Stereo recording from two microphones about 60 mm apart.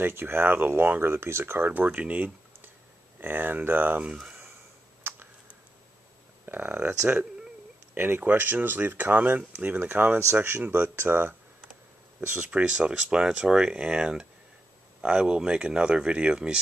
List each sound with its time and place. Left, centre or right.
0.0 s speech: right
4.0 s speech: centre
5.1 s computer keyboard: right
6.4 s a sound: right
7.9 s speech: right
12.3 s speech: right
12.9 s speech: centre